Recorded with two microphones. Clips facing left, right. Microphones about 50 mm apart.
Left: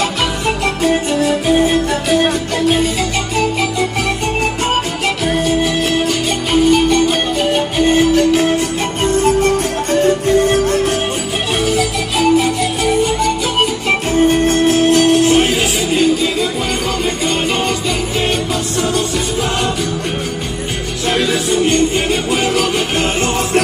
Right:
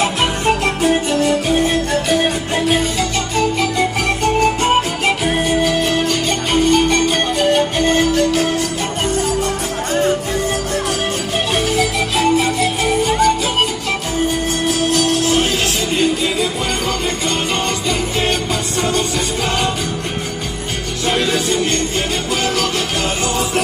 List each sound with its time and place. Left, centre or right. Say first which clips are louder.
0.5 s music: even; centre
1.1 s music: left 2 dB; centre
5.0 s music: left 1 dB; centre
5.6 s music: left 1 dB; centre
9.0 s music: left 7 dB; left
11.6 s music: left 1 dB; centre
14.2 s music: left 7 dB; left
21.1 s music: left 2 dB; centre